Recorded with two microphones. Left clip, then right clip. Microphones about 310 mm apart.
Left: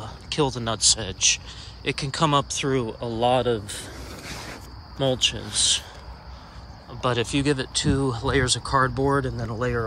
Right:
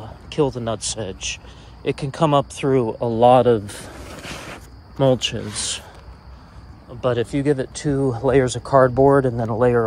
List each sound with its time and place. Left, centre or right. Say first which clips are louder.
0.0 s speech: right 3 dB; centre
5.2 s speech: left 3 dB; centre
7.0 s speech: right 3 dB; centre